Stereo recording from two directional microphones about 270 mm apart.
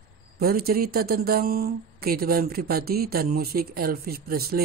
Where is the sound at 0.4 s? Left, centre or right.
Right.